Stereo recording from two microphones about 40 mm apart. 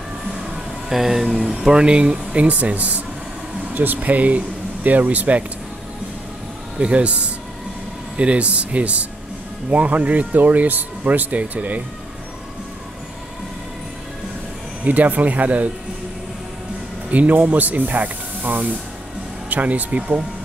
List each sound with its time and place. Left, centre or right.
0.8 s speech: centre
1.7 s speech: right
2.4 s speech: right
6.8 s speech: right
14.9 s speech: right
17.1 s speech: right